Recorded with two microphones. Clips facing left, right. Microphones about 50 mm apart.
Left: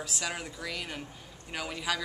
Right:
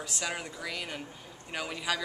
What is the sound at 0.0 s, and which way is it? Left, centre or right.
Speech, centre.